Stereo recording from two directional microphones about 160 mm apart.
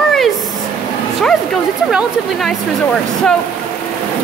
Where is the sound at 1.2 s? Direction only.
Centre (ahead or behind).